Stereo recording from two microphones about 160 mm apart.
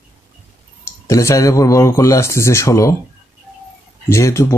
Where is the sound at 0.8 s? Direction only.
15° left (ahead or behind).